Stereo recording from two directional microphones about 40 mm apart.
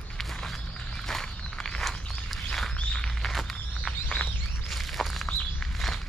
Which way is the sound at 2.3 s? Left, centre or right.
Centre.